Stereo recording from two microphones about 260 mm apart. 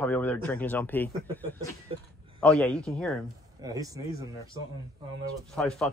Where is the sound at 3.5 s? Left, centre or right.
Centre.